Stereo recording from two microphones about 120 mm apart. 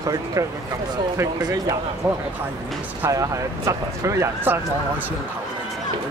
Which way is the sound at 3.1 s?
25° right (ahead or behind).